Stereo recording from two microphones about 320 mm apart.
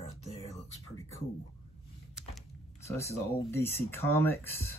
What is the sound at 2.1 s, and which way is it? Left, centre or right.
Speech, centre.